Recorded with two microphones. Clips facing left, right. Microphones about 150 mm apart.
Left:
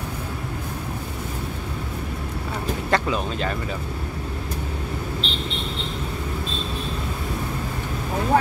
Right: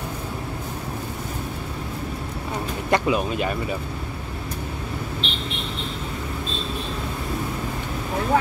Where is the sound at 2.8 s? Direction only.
15° right (ahead or behind).